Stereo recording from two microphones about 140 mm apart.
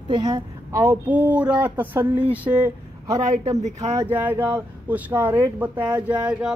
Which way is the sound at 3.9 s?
15° right (ahead or behind).